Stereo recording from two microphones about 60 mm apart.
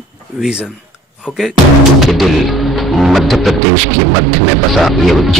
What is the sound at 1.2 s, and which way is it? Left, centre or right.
Speech, centre.